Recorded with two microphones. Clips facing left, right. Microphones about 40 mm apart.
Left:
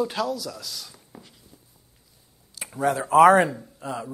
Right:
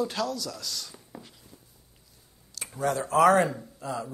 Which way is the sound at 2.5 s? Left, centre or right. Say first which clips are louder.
Left 4 dB; centre.